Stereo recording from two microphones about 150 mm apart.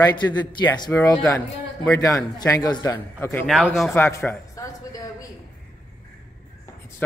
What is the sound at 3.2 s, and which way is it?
Speech, 15° left (ahead or behind).